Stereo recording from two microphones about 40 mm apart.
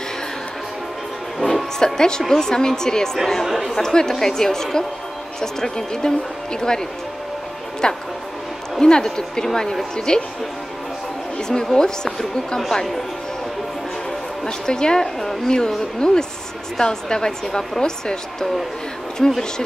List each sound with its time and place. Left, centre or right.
2.0 s a woman's voice: centre
3.4 s speech: centre
3.7 s a woman's voice: centre
7.8 s a woman's voice: centre
11.3 s a woman's voice: centre
14.4 s a woman's voice: centre